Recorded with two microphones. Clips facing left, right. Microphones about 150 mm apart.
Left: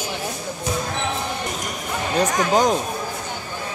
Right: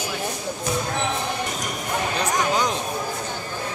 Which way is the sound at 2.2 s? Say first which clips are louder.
Left 6 dB; 45° left (ahead or behind).